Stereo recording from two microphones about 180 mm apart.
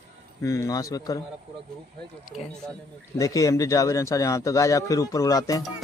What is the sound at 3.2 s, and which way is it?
A man's voice, 20° left (ahead or behind).